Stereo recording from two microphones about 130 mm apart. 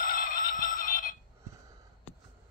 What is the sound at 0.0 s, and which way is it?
Music, 90° left.